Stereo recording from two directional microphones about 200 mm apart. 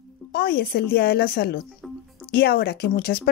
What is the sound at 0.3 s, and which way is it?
Speech, 50° left (ahead or behind).